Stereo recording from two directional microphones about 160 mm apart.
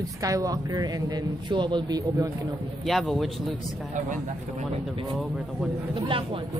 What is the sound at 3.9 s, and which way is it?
Speech, 50° right (ahead or behind).